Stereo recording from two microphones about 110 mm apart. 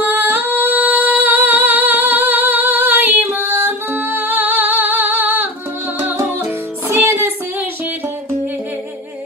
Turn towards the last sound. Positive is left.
turn(degrees=-20)  # may be behind; listen again after turning